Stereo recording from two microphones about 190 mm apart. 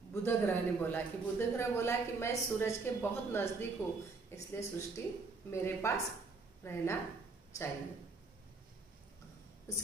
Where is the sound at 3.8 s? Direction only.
15° left (ahead or behind).